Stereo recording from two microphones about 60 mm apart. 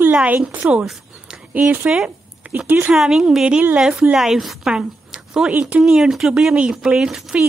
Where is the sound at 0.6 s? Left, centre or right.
Right.